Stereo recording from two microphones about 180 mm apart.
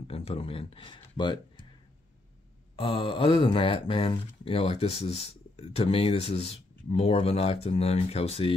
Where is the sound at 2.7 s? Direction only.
30° left (ahead or behind).